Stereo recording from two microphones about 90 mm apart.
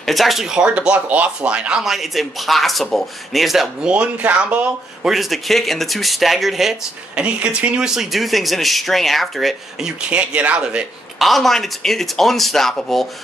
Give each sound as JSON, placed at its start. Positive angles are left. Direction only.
{"t": 0.0, "sound": "speech", "side_deg": 0}
{"t": 5.1, "sound": "speech", "side_deg": 0}
{"t": 7.2, "sound": "speech", "side_deg": -15}
{"t": 11.1, "sound": "speech", "side_deg": 0}